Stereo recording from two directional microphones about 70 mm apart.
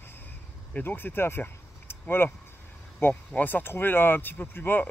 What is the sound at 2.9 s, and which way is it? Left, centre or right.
Speech, left.